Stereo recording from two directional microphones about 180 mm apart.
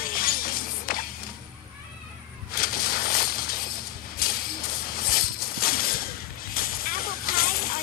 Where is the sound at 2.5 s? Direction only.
55° left (ahead or behind).